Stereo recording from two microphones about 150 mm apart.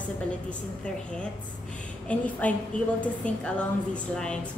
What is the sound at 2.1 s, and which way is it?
Speech, 10° left (ahead or behind).